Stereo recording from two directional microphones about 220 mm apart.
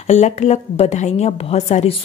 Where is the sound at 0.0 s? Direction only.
30° left (ahead or behind).